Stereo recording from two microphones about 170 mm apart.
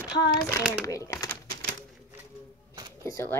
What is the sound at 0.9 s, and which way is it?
Speech, 20° left (ahead or behind).